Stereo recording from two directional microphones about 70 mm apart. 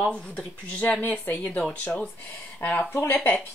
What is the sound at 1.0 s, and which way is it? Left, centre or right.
Speech, left.